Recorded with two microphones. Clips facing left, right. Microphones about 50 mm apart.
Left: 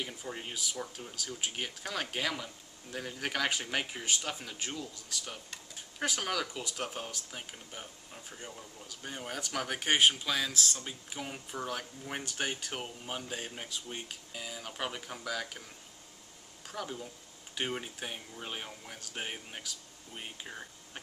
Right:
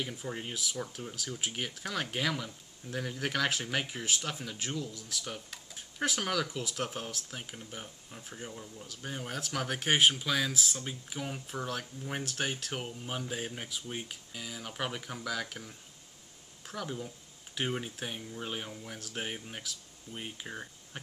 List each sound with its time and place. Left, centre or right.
0.0 s speech: centre
14.3 s speech: centre
16.7 s speech: centre